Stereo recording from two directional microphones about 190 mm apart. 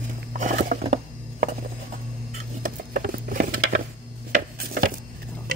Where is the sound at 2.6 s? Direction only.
45° right (ahead or behind).